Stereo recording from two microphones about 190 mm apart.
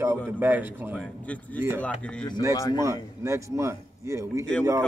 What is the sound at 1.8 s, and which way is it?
Speech, 5° left (ahead or behind).